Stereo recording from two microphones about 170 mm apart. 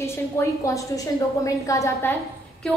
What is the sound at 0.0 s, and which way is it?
A woman's voice, 15° left (ahead or behind).